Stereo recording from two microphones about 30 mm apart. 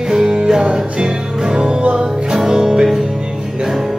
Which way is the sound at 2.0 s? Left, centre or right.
Right.